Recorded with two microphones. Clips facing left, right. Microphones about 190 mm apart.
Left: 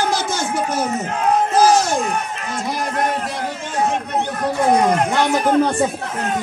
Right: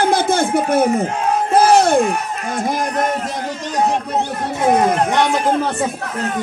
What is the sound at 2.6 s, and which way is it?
Music, 50° right (ahead or behind).